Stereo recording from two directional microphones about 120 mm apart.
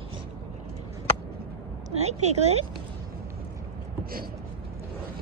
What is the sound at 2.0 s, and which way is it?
Speech, 65° right (ahead or behind).